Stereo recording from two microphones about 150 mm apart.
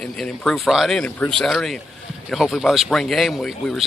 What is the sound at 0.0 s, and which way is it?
Speech, 5° left (ahead or behind).